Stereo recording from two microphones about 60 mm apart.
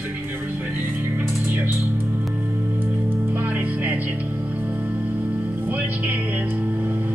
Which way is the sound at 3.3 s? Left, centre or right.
Right.